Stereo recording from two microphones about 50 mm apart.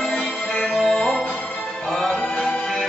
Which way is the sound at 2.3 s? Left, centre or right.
Centre.